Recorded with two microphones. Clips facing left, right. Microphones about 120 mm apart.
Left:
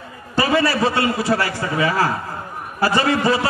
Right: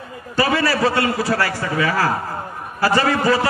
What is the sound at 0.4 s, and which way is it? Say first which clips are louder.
A man's voice: even; 25° left (ahead or behind).